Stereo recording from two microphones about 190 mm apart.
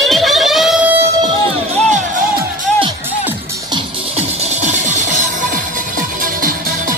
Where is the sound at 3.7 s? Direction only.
35° right (ahead or behind).